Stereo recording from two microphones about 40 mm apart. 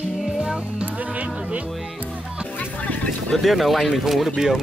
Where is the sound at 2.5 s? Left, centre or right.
Left.